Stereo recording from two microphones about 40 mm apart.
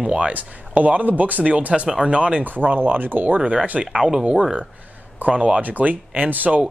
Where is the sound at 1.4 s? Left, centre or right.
Right.